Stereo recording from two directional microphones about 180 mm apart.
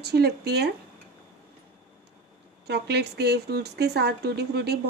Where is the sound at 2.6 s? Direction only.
65° right (ahead or behind).